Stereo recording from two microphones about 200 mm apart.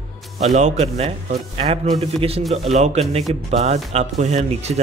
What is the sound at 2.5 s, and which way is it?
A man's voice, 35° right (ahead or behind).